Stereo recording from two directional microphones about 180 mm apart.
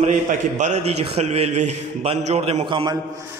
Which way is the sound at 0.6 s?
40° right (ahead or behind).